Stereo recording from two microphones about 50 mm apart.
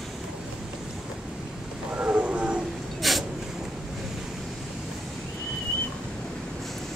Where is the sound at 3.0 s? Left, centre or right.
Centre.